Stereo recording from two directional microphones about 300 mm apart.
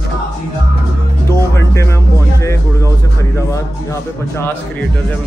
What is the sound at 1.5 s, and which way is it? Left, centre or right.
Music, centre.